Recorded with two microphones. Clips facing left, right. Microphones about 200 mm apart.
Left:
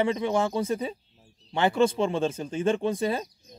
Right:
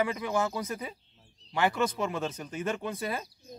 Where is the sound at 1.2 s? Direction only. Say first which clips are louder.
Left 5 dB; 5° left (ahead or behind).